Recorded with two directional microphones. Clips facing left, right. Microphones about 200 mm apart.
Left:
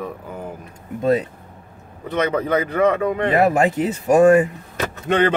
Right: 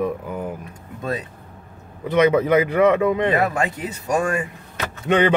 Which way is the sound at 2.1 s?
10° right (ahead or behind).